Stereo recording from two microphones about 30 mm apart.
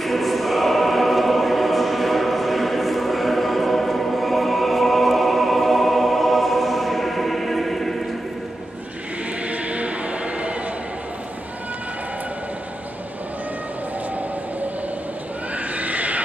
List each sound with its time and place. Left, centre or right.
0.0 s choir: centre
9.5 s music: right
15.5 s neigh: right